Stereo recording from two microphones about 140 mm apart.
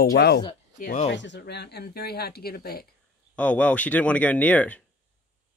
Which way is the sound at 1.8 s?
90° left.